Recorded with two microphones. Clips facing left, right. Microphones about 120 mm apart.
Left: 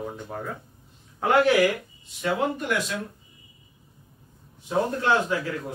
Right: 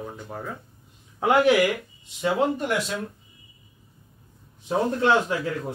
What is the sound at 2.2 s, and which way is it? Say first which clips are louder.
Speech: right 3 dB; 30° right (ahead or behind).